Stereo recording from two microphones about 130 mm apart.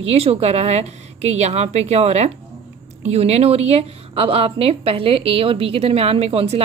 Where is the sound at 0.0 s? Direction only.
50° right (ahead or behind).